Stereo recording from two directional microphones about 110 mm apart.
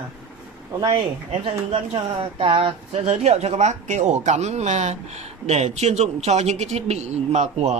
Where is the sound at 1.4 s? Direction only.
55° right (ahead or behind).